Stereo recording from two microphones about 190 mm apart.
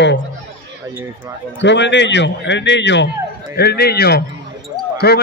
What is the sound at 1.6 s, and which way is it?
A man's voice, 70° left (ahead or behind).